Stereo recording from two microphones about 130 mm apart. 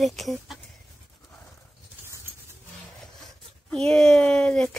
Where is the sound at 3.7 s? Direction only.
5° left (ahead or behind).